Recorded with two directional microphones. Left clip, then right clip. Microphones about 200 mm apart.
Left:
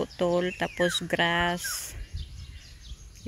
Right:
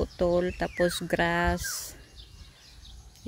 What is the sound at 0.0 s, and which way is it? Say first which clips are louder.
Speech: even; 15° right (ahead or behind).